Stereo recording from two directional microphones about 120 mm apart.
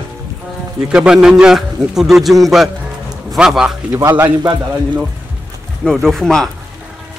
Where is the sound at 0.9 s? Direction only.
5° right (ahead or behind).